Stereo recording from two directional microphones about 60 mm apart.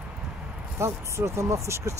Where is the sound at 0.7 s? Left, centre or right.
Right.